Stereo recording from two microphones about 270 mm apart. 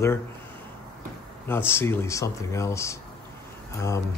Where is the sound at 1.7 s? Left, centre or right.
Centre.